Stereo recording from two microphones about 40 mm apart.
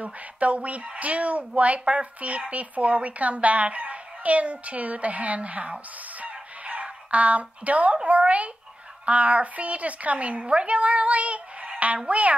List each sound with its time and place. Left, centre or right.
0.0 s speech: right
6.1 s fowl: right
8.0 s speech: right